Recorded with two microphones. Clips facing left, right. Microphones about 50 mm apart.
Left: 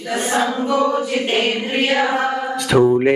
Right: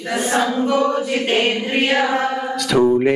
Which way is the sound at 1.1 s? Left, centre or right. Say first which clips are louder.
Right 1 dB; centre.